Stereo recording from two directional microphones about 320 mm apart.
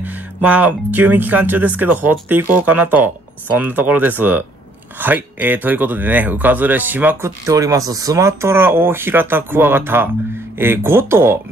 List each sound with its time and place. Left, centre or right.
0.0 s speech: centre